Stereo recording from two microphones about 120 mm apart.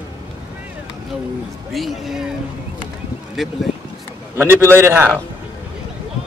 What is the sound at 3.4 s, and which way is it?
Speech, centre (ahead or behind).